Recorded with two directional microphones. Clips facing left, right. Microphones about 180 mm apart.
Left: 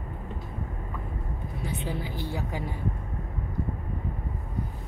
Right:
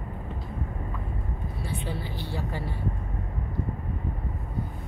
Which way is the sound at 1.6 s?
20° left (ahead or behind).